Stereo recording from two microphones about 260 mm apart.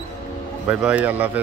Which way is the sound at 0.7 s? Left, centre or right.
Centre.